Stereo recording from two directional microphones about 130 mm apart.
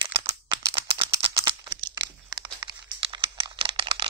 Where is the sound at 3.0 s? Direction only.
40° right (ahead or behind).